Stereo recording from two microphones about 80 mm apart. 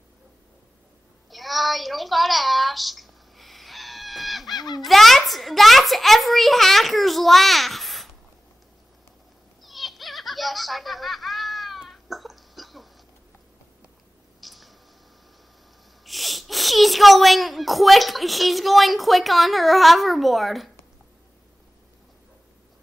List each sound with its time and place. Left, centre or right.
1.3 s a sound: centre
4.6 s speech: left
4.8 s a child's voice: centre
9.6 s baby laughter: centre
14.4 s a sound: centre
16.1 s speech: centre